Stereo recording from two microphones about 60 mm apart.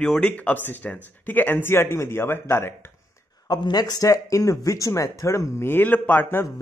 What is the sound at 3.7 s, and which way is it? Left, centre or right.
Speech, left.